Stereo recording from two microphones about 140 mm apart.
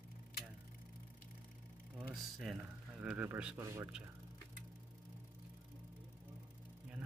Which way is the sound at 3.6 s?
20° right (ahead or behind).